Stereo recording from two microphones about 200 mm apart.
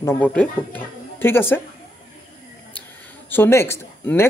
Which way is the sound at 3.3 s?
10° left (ahead or behind).